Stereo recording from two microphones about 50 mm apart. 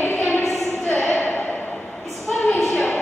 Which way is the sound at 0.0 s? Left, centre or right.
Left.